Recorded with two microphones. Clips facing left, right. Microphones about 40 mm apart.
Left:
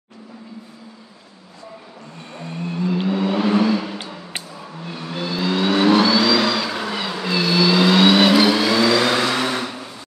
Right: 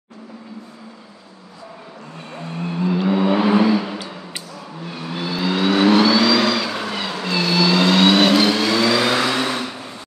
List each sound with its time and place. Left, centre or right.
2.3 s vehicle: centre